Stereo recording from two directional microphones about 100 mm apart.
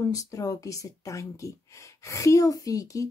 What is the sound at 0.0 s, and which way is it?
Speech, 35° left (ahead or behind).